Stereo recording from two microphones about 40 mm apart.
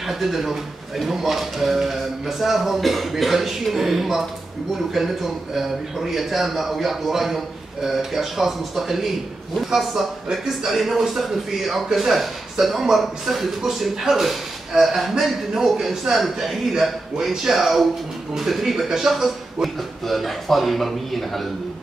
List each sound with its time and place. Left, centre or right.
0.0 s a man's voice: centre